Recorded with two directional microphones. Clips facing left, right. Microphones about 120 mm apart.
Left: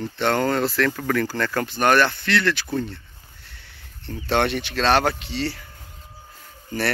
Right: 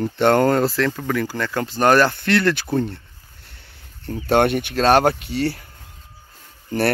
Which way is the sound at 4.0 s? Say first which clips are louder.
Right 5 dB; 45° right (ahead or behind).